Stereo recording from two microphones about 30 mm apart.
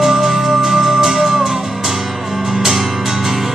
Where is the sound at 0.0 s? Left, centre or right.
Centre.